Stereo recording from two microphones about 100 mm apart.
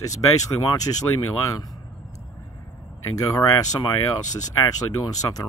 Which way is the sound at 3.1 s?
35° left (ahead or behind).